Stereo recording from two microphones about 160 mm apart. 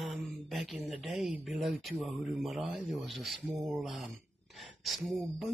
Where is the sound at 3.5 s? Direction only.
15° right (ahead or behind).